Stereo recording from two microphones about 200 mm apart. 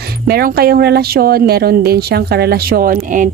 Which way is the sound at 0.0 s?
50° right (ahead or behind).